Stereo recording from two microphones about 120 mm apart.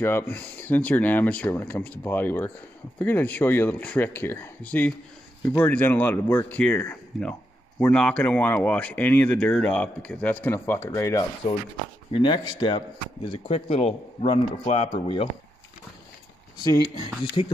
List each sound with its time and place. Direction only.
0.0 s speech: 15° left (ahead or behind)
12.1 s a man's voice: 45° left (ahead or behind)
16.5 s speech: 35° left (ahead or behind)